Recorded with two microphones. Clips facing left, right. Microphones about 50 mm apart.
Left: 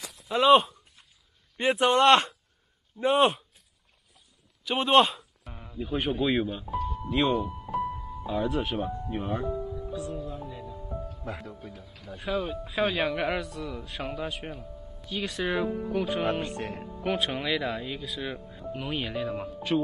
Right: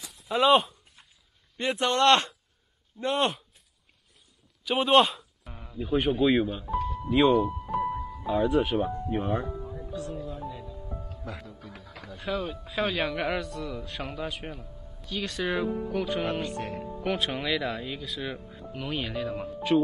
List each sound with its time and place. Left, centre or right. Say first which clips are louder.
0.1 s a sound: left 2 dB; centre
1.8 s speech: left 2 dB; left
3.0 s speech: left 4 dB; centre
4.6 s a man's voice: even; centre
11.3 s speech: left 2 dB; left
11.8 s a man's voice: right 4 dB; right
12.3 s speech: left 1 dB; centre
16.4 s speech: right 1 dB; left
17.0 s speech: left 1 dB; centre